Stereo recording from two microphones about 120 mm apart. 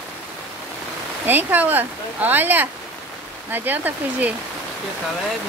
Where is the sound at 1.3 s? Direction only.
15° right (ahead or behind).